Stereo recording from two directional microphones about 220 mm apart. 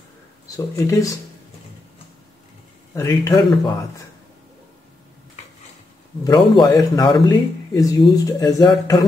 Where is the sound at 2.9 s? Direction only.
15° left (ahead or behind).